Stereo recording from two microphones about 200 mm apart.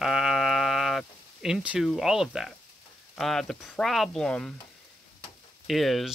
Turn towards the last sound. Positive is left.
turn(degrees=0)  # may be behind; listen again after turning